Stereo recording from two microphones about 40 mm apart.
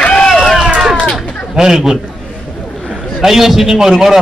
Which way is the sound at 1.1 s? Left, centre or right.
Centre.